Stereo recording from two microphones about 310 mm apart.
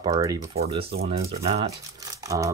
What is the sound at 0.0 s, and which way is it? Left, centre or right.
Speech, centre.